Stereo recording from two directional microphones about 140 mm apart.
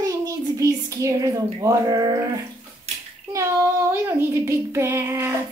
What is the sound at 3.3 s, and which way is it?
A child's voice, 20° right (ahead or behind).